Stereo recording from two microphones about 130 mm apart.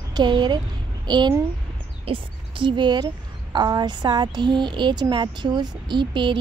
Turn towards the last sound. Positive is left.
turn(degrees=-40)  # may be behind; listen again after turning